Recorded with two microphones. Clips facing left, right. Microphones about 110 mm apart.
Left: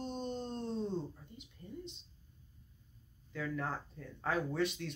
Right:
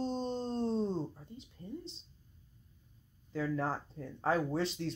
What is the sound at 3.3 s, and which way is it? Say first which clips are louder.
Speech: right 4 dB; 30° right (ahead or behind).